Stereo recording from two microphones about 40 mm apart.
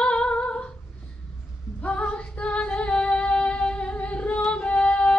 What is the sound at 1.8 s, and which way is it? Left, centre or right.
Female singing, left.